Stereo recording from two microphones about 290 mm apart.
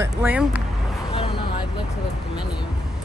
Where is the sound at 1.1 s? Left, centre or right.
Centre.